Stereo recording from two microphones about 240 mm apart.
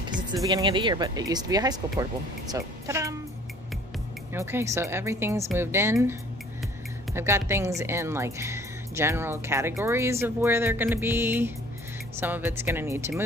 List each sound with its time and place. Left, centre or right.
0.4 s speech: centre
4.3 s speech: centre
7.2 s speech: centre